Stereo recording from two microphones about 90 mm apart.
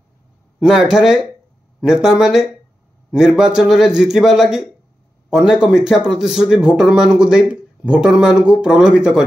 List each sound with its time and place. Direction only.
0.6 s a man's voice: 5° right (ahead or behind)